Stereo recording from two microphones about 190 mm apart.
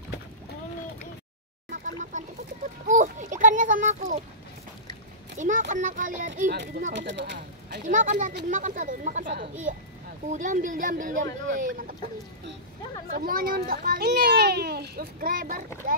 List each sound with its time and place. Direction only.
1.7 s a sound: 40° right (ahead or behind)
5.4 s a child's voice: 40° right (ahead or behind)
6.5 s speech: 70° right (ahead or behind)
7.8 s a child's voice: 40° right (ahead or behind)
13.1 s a child's voice: 50° right (ahead or behind)